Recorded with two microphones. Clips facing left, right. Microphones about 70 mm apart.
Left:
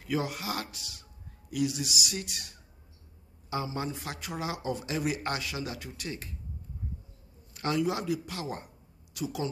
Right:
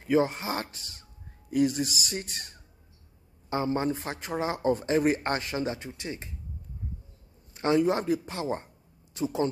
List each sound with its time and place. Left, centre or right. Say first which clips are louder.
0.0 s speech: right 7 dB; right
3.7 s speech: right 6 dB; right
7.5 s a man's voice: right 5 dB; right